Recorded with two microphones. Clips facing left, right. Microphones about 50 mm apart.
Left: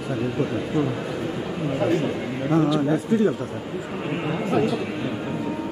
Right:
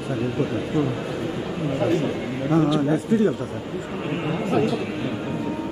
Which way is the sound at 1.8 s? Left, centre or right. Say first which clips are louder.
Even; centre.